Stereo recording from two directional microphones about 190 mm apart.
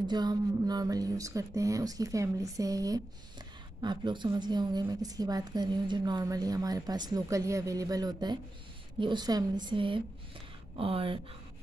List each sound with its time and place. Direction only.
0.0 s a woman's voice: 20° right (ahead or behind)